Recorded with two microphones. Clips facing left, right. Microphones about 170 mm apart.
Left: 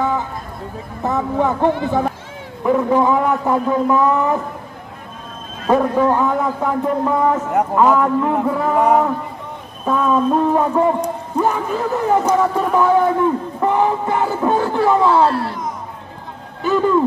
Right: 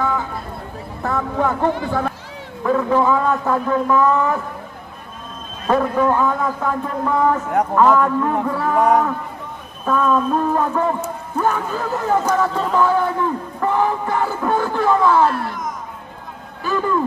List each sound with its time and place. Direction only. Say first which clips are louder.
1.0 s speech: left 2 dB; 20° left (ahead or behind)
5.7 s speech: left 2 dB; 20° left (ahead or behind)
9.8 s speech: left 1 dB; 15° left (ahead or behind)
15.2 s a sound: left 2 dB; 35° left (ahead or behind)
16.6 s hoot: left 5 dB; 20° left (ahead or behind)